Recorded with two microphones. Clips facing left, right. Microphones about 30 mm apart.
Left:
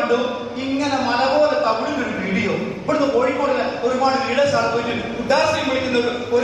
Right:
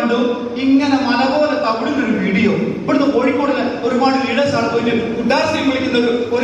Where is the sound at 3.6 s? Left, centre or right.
Centre.